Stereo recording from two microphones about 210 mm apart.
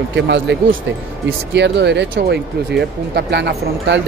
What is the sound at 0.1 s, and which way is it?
Speech, 55° right (ahead or behind).